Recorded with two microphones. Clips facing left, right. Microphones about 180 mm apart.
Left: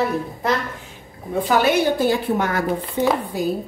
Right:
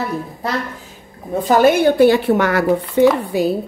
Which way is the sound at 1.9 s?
70° right (ahead or behind).